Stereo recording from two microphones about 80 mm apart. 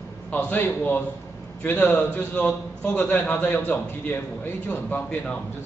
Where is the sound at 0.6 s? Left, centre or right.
Left.